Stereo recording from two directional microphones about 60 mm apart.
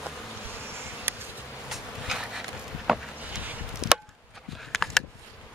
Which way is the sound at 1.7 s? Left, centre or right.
Centre.